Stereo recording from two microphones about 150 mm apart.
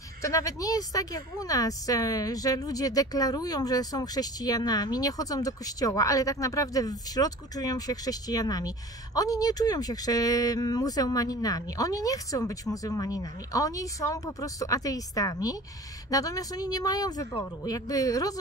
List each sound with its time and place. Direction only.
0.2 s a woman's voice: 20° left (ahead or behind)